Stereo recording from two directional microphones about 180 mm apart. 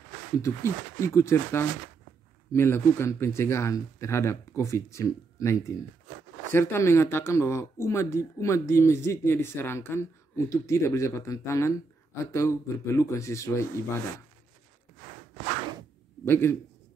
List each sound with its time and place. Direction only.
0.4 s speech: 15° left (ahead or behind)
16.3 s speech: 15° left (ahead or behind)